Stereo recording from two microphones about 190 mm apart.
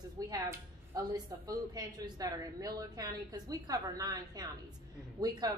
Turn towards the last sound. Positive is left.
turn(degrees=-20)  # may be behind; listen again after turning